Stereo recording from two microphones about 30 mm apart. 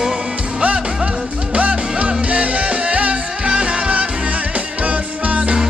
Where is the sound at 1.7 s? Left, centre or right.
Right.